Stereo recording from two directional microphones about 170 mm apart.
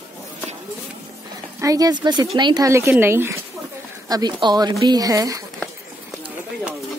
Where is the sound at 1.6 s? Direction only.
20° right (ahead or behind).